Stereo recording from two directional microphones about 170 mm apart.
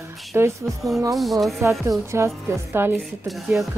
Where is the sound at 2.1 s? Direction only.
15° right (ahead or behind).